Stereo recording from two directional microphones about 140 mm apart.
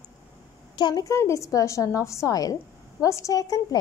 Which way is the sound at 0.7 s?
30° left (ahead or behind).